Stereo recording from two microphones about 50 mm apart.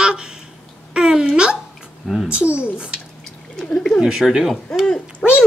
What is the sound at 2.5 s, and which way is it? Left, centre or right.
Speech, right.